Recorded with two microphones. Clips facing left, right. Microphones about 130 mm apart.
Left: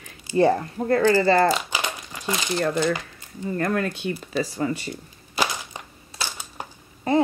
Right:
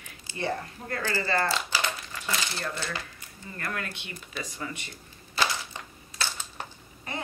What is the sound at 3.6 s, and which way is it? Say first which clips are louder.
Speech: left 11 dB; 35° left (ahead or behind).